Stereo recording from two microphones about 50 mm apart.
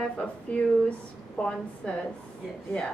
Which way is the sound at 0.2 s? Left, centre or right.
Left.